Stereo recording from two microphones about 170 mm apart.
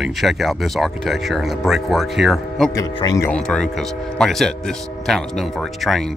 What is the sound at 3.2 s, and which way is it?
Speech, 5° left (ahead or behind).